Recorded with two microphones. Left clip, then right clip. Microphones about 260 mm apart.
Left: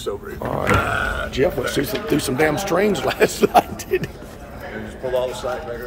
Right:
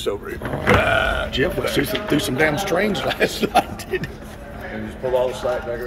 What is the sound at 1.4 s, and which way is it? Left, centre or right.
Speech, centre.